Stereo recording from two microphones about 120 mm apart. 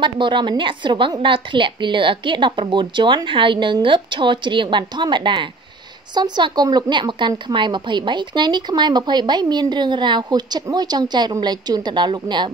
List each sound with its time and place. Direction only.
0.0 s a woman's voice: 40° right (ahead or behind)